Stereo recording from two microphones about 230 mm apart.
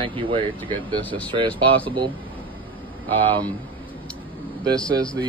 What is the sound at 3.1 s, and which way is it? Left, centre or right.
Speech, right.